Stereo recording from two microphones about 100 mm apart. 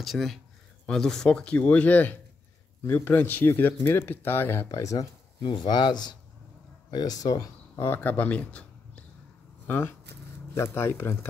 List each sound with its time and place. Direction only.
0.0 s speech: centre (ahead or behind); by 4.6 s 20° left (ahead or behind)
4.6 s speech: 35° left (ahead or behind)
5.4 s speech: 50° left (ahead or behind)
7.8 s speech: 20° left (ahead or behind)
9.7 s speech: 20° left (ahead or behind)